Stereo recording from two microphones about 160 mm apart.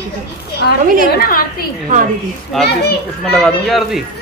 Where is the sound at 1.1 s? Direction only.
65° left (ahead or behind).